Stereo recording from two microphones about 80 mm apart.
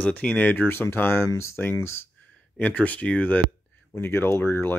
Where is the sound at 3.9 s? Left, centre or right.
Left.